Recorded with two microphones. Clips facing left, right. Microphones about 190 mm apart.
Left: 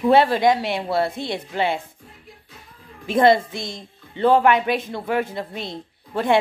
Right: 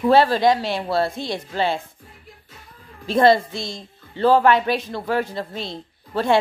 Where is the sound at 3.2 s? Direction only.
20° left (ahead or behind).